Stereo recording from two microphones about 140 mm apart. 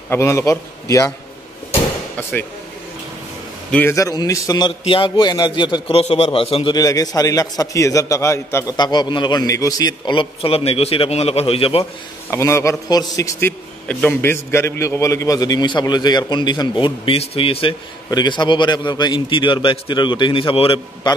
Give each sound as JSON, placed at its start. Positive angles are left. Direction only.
{"t": 0.1, "sound": "a man's voice", "side_deg": 20}
{"t": 3.9, "sound": "a man's voice", "side_deg": 25}
{"t": 4.6, "sound": "a man's voice", "side_deg": 40}
{"t": 6.7, "sound": "a man's voice", "side_deg": 25}
{"t": 8.7, "sound": "a man's voice", "side_deg": 30}
{"t": 11.8, "sound": "a man's voice", "side_deg": 20}